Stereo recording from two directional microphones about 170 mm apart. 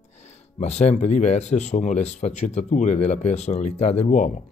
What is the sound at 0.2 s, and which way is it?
Speech, 40° left (ahead or behind).